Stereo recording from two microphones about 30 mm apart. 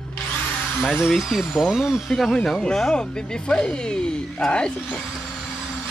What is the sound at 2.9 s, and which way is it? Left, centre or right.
Speech, left.